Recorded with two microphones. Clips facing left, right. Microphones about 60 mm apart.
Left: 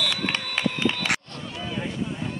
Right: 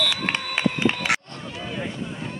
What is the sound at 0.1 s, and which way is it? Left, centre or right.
Run, centre.